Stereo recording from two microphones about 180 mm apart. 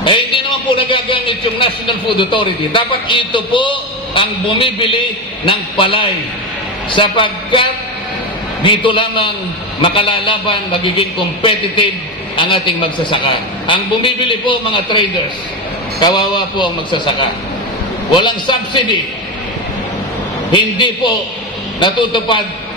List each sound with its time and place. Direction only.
0.0 s a man's voice: 25° left (ahead or behind)
20.5 s a man's voice: 25° left (ahead or behind)